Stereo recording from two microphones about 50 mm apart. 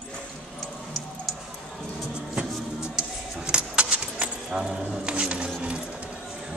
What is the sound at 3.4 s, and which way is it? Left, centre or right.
Keys jangling, right.